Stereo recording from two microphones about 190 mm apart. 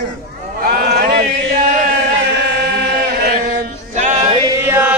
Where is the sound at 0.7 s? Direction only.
55° right (ahead or behind).